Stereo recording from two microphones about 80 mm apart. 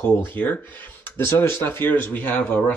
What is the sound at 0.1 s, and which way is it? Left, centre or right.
Speech, left.